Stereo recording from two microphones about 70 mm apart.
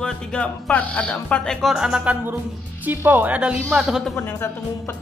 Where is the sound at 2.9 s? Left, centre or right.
Right.